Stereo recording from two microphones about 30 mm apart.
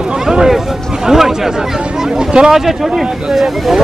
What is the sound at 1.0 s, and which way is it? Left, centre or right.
Speech, centre.